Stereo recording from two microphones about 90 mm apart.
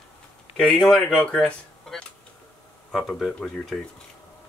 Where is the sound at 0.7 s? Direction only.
10° left (ahead or behind).